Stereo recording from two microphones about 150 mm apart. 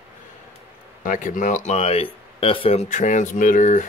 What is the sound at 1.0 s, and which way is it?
Speech, 60° left (ahead or behind).